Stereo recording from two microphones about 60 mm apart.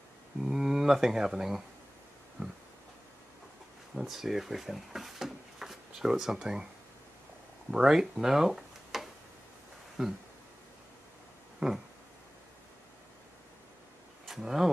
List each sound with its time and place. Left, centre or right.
0.4 s speech: centre
3.9 s speech: centre
7.7 s speech: centre
11.6 s a sound: right
14.2 s speech: centre